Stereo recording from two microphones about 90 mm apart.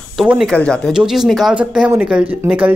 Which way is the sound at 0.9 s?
5° right (ahead or behind).